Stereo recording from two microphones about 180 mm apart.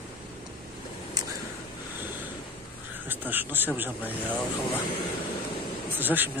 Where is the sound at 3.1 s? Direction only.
10° right (ahead or behind).